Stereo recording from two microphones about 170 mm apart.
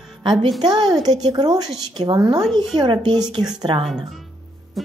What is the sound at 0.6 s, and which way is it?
A woman's voice, 25° right (ahead or behind).